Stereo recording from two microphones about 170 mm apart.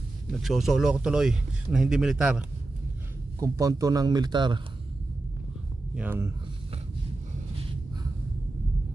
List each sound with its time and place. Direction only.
0.3 s speech: centre (ahead or behind)
3.3 s a man's voice: 20° right (ahead or behind)
5.9 s speech: 15° right (ahead or behind)